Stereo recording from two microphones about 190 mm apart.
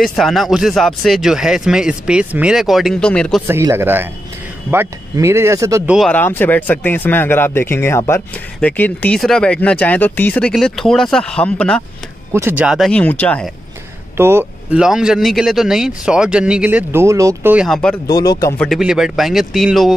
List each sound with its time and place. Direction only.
0.0 s speech: centre (ahead or behind)
3.4 s speech: 10° right (ahead or behind)
5.9 s speech: 5° left (ahead or behind)
12.3 s speech: 15° right (ahead or behind); by 13.5 s 5° left (ahead or behind)
14.1 s speech: 10° right (ahead or behind)
18.0 s speech: 20° left (ahead or behind)
18.6 s speech: centre (ahead or behind)